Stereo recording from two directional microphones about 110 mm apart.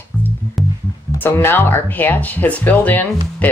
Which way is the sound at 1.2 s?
20° left (ahead or behind).